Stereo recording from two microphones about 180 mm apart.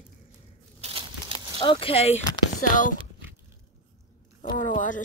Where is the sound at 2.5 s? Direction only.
45° left (ahead or behind).